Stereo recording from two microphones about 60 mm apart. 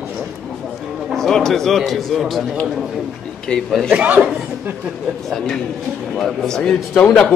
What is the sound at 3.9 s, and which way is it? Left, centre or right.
Speech, right.